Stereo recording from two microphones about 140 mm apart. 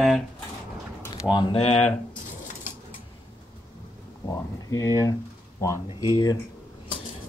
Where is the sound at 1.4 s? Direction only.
40° left (ahead or behind).